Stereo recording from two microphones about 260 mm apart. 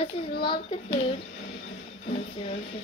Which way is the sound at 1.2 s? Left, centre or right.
Left.